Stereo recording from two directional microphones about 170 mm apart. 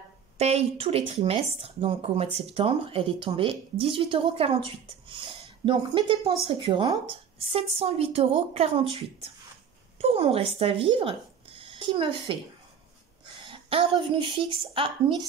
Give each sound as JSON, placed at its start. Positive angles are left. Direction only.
{"t": 0.4, "sound": "speech", "side_deg": -40}
{"t": 11.0, "sound": "a sound", "side_deg": -35}
{"t": 13.4, "sound": "a woman's voice", "side_deg": -35}